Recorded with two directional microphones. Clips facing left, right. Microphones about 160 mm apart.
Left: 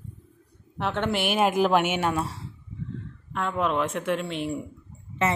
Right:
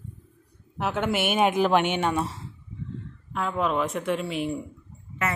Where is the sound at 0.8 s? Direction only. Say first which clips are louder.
Right 1 dB; 5° right (ahead or behind).